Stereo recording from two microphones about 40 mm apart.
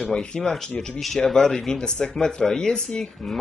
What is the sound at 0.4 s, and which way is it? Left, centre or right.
Speech, centre.